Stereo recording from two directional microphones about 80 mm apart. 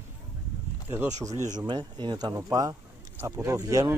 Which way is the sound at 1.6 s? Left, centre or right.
Right.